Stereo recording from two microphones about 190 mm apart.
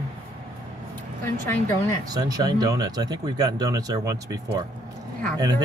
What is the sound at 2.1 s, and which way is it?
Speech, 20° right (ahead or behind).